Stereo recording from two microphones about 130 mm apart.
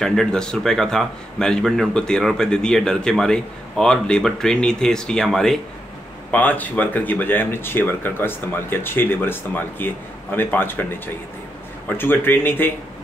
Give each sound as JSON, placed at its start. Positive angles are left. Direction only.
{"t": 0.0, "sound": "speech", "side_deg": 5}
{"t": 12.0, "sound": "speech", "side_deg": 15}